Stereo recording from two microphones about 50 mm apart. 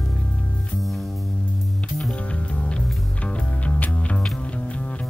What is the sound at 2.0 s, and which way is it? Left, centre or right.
Music, centre.